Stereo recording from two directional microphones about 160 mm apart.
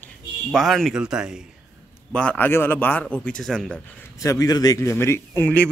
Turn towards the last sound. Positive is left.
turn(degrees=10)  # may be behind; listen again after turning